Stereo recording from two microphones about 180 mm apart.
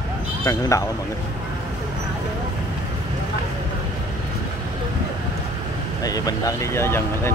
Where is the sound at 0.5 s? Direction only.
15° left (ahead or behind).